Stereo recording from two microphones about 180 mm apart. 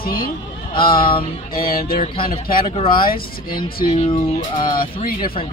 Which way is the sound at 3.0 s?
55° left (ahead or behind).